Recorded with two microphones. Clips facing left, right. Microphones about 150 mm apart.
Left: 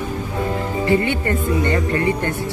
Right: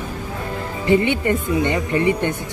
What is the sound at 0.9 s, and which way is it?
Speech, 20° right (ahead or behind).